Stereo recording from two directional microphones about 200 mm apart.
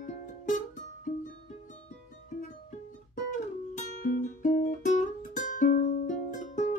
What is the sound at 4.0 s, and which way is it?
Music, 40° left (ahead or behind).